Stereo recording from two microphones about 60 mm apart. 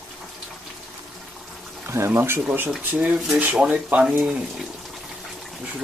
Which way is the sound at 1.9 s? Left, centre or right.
Right.